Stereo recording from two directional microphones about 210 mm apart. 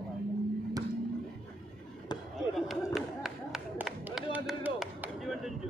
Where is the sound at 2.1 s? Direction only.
20° left (ahead or behind).